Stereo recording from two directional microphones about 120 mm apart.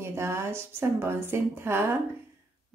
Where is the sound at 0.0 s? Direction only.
20° right (ahead or behind).